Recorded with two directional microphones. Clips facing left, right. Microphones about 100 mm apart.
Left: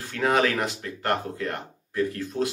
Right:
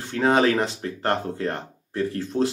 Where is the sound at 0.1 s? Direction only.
30° right (ahead or behind).